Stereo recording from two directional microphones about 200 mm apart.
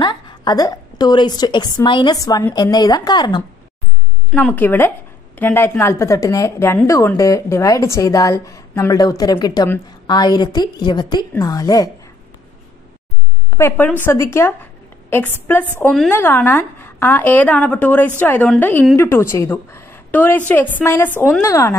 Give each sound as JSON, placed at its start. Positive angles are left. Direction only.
{"t": 0.0, "sound": "a woman's voice", "side_deg": 20}
{"t": 4.3, "sound": "speech", "side_deg": 5}
{"t": 13.5, "sound": "a woman's voice", "side_deg": 15}